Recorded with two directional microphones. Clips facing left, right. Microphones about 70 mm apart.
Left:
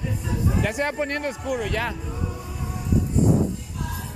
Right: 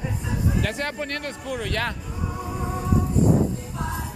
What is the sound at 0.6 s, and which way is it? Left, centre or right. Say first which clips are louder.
Speech: left 3 dB; centre.